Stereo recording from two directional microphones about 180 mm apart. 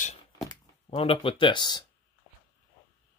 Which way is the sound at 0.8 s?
30° left (ahead or behind).